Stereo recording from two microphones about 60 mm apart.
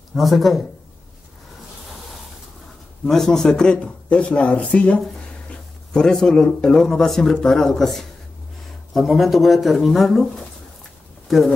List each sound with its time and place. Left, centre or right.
0.1 s speech: centre
3.1 s speech: centre
5.5 s speech: centre
11.2 s speech: centre